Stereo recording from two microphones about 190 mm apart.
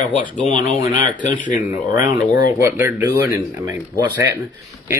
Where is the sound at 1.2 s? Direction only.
40° left (ahead or behind).